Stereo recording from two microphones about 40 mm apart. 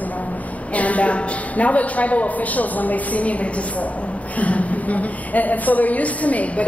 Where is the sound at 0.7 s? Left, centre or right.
Left.